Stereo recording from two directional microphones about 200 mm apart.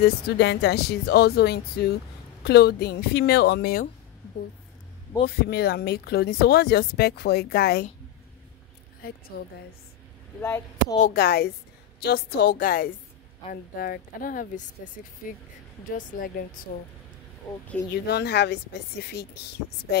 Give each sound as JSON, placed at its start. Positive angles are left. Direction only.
{"t": 0.0, "sound": "speech", "side_deg": 55}
{"t": 5.2, "sound": "speech", "side_deg": 50}
{"t": 9.0, "sound": "a woman's voice", "side_deg": 50}
{"t": 10.4, "sound": "speech", "side_deg": 10}
{"t": 11.0, "sound": "speech", "side_deg": 50}
{"t": 16.1, "sound": "speech", "side_deg": 45}
{"t": 17.9, "sound": "a woman's voice", "side_deg": 55}